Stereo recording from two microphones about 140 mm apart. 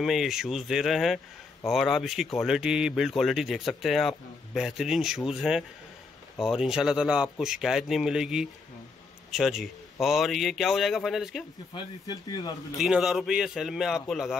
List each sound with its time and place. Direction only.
0.0 s speech: centre (ahead or behind)
11.7 s speech: 30° left (ahead or behind)
12.7 s speech: 5° right (ahead or behind)